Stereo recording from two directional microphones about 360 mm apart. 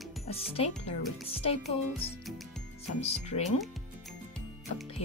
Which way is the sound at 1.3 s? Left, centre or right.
Centre.